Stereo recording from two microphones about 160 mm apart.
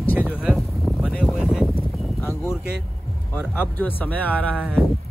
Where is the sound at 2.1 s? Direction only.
15° left (ahead or behind).